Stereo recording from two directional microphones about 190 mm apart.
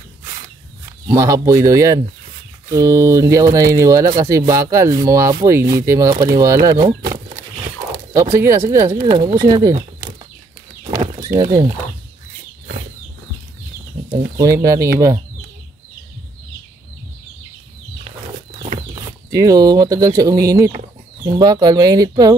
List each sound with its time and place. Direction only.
1.0 s speech: 15° right (ahead or behind)
7.9 s speech: 15° right (ahead or behind)
10.9 s bird: 15° right (ahead or behind)
14.6 s speech: 15° right (ahead or behind)
19.3 s speech: 20° right (ahead or behind)